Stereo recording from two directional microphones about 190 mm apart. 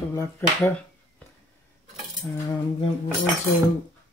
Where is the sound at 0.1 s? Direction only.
15° left (ahead or behind).